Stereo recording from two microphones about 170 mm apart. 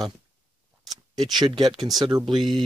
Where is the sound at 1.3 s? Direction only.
25° right (ahead or behind).